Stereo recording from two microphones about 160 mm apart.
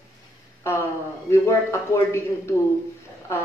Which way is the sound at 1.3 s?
15° left (ahead or behind).